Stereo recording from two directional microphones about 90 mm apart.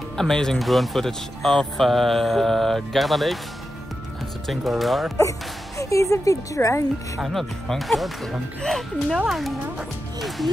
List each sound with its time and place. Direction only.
0.2 s speech: 5° left (ahead or behind)
4.5 s speech: centre (ahead or behind)
5.8 s a woman's voice: 35° left (ahead or behind)
7.2 s speech: centre (ahead or behind)
10.2 s speech: centre (ahead or behind)